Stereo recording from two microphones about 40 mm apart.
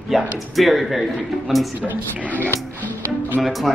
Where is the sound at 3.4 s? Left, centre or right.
Centre.